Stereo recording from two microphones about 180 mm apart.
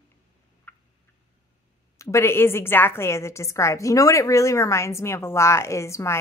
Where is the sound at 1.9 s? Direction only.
15° left (ahead or behind).